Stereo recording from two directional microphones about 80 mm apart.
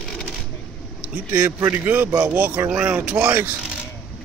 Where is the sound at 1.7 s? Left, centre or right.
Right.